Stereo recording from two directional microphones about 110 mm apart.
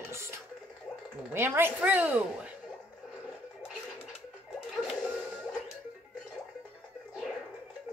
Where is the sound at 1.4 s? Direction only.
20° right (ahead or behind).